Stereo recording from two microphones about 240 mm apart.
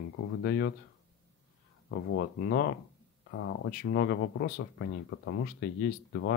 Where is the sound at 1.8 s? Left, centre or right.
Left.